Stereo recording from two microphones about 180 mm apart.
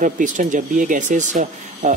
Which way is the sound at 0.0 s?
45° right (ahead or behind).